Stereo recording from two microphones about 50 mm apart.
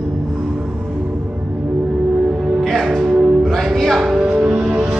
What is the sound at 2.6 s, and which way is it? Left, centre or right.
Music, centre.